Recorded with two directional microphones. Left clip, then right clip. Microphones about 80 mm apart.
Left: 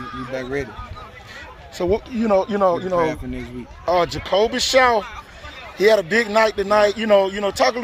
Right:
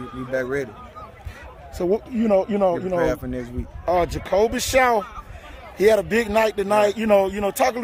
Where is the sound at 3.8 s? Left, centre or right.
Right.